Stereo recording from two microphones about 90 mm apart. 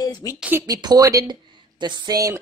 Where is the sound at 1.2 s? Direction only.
55° right (ahead or behind).